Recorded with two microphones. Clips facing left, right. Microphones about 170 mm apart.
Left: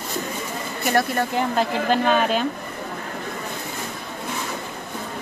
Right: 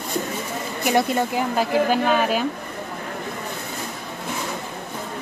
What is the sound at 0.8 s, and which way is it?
Speech, 20° right (ahead or behind).